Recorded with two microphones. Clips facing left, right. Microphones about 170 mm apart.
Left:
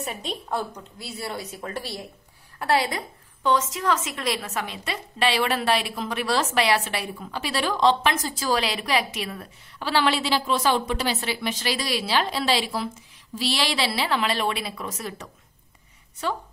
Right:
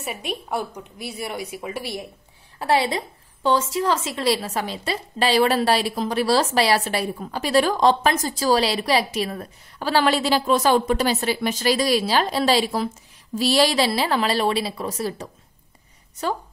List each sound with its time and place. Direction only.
0.0 s a woman's voice: 10° right (ahead or behind)
2.6 s a woman's voice: 25° right (ahead or behind)